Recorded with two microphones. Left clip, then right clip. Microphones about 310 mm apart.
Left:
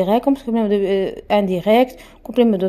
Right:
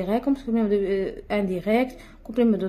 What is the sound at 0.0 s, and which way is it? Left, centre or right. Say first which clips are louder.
Speech: left 8 dB; left.